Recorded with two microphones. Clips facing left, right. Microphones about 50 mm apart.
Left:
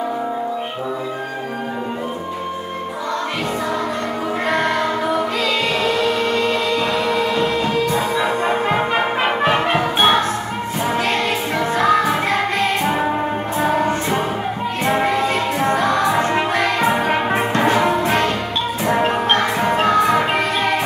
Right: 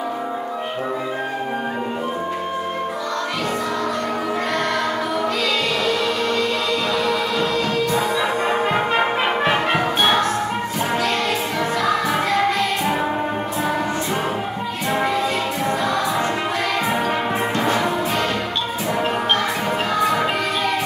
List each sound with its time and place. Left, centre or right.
4.5 s choir: left
8.6 s brass instrument: centre
9.8 s music: left
11.7 s music: left
14.9 s music: left
18.9 s music: left